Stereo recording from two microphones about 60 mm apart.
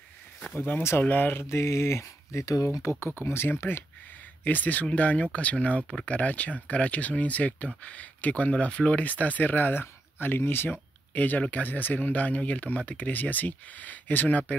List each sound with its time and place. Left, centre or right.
0.6 s speech: left
1.5 s speech: left
2.4 s speech: left
2.8 s speech: left
4.5 s speech: left